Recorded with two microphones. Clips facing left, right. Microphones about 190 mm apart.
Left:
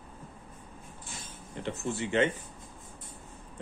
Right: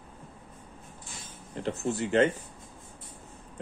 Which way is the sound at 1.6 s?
40° right (ahead or behind).